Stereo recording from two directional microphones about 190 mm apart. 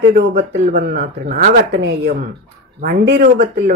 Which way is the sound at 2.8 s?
50° right (ahead or behind).